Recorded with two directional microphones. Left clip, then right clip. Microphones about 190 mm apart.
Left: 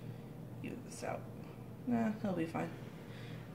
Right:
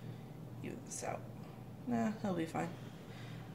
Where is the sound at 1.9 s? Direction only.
15° right (ahead or behind).